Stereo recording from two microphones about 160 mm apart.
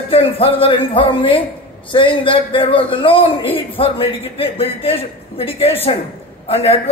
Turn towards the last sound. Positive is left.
turn(degrees=40)  # may be behind; listen again after turning